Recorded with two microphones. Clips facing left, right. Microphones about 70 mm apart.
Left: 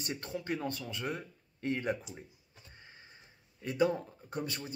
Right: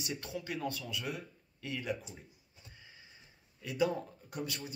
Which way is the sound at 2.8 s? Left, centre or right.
Left.